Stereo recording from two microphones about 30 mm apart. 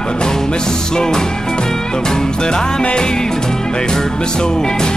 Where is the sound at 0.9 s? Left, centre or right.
Left.